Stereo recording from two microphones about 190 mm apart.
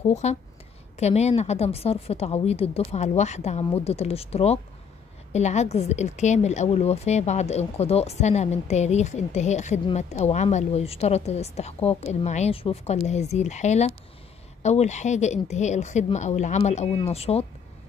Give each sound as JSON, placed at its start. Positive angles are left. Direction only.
{"t": 0.0, "sound": "a woman's voice", "side_deg": 35}